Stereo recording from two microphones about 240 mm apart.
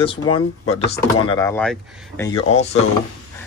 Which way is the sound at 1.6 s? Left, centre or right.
Centre.